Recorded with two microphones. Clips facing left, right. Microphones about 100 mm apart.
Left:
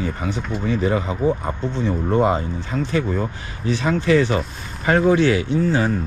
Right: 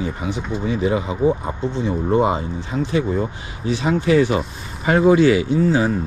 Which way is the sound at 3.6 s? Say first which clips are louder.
Right 1 dB; 20° right (ahead or behind).